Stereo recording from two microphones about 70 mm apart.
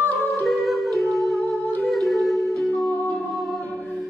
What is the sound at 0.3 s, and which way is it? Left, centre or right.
Music, centre.